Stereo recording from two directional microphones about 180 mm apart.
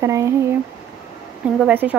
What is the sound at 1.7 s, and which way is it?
Speech, 10° right (ahead or behind).